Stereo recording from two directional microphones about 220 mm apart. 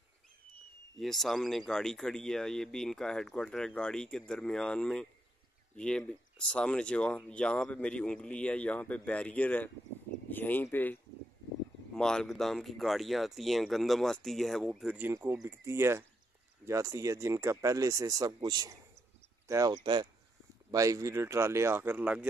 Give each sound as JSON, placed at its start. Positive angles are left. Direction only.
{"t": 0.9, "sound": "speech", "side_deg": 0}